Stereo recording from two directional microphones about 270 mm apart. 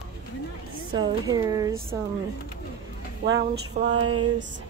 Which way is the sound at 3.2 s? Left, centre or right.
Right.